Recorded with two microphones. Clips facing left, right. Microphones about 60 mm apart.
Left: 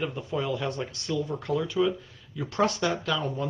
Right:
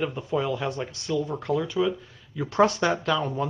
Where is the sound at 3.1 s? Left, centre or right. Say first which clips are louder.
Right 3 dB; centre.